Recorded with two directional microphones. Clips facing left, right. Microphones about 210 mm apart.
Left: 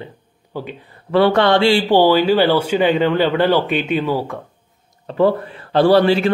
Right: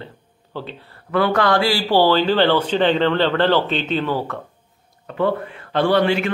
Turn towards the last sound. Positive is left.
turn(degrees=35)  # may be behind; listen again after turning